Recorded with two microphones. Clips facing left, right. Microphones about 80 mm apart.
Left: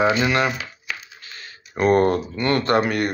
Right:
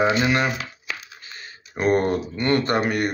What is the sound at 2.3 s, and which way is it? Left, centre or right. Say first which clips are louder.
Speech: even; right.